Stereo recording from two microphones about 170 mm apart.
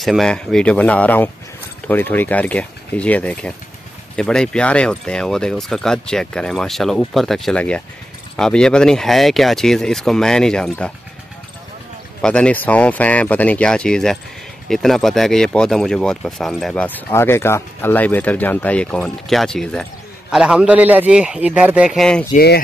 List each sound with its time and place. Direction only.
0.0 s speech: centre (ahead or behind)
12.2 s speech: 5° left (ahead or behind)
22.3 s speech: 70° left (ahead or behind)